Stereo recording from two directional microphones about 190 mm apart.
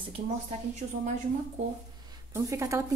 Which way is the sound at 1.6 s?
35° right (ahead or behind).